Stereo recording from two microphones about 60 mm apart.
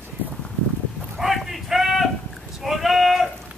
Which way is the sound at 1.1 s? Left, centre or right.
Centre.